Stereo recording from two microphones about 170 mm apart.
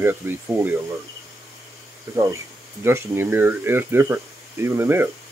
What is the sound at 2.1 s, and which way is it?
Speech, 15° right (ahead or behind).